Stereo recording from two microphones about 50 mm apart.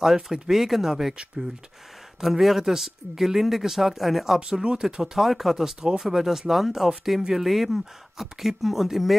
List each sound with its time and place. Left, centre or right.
0.0 s speech: centre
2.1 s speech: centre
4.4 s speech: centre